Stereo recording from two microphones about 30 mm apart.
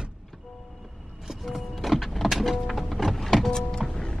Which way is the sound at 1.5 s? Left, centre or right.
Centre.